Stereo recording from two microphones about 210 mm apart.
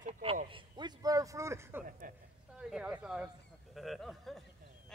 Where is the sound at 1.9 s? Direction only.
40° right (ahead or behind).